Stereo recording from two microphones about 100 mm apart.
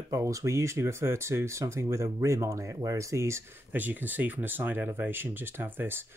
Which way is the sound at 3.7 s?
20° right (ahead or behind).